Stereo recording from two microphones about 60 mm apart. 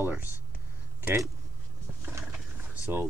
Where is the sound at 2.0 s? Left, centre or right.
Right.